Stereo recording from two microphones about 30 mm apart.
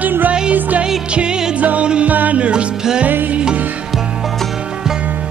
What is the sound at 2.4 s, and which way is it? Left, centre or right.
Music, right.